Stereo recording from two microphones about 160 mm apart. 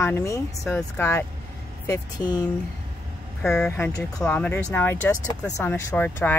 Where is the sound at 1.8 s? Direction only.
20° left (ahead or behind).